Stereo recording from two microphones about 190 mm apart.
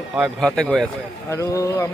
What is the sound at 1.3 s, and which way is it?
Speech, 15° left (ahead or behind).